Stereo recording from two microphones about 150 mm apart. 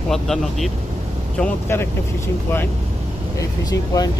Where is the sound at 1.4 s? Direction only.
10° left (ahead or behind).